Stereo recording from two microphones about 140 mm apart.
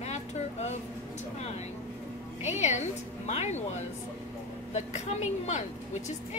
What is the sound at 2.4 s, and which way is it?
A woman's voice, 55° left (ahead or behind).